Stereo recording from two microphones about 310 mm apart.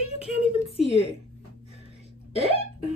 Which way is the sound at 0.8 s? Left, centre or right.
Centre.